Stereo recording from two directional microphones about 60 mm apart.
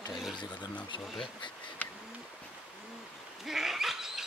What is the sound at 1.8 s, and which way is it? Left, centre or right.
Bird, left.